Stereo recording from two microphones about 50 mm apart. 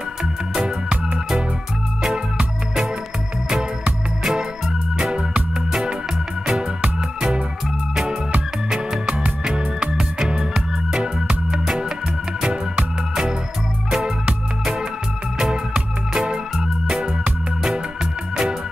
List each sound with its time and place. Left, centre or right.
0.7 s music: right
4.2 s music: centre
6.8 s music: centre
18.3 s music: centre